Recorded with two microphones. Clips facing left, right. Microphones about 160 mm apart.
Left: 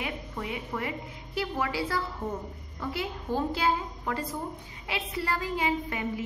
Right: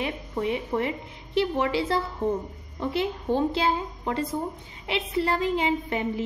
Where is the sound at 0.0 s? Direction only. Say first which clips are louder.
Right 7 dB; 25° right (ahead or behind).